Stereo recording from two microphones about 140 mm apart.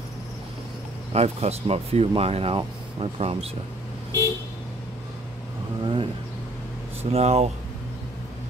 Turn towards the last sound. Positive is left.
turn(degrees=-50)  # may be behind; listen again after turning